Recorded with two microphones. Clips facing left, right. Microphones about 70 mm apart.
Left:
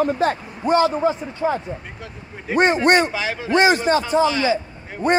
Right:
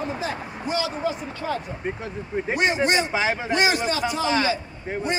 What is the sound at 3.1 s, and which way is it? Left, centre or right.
Speech, right.